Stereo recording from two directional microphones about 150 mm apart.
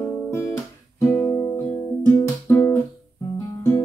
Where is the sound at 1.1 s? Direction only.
20° left (ahead or behind).